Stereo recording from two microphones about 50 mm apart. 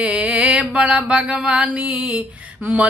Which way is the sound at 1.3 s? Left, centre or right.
Centre.